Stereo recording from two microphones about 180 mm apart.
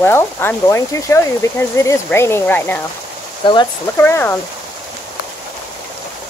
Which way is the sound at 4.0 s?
10° left (ahead or behind).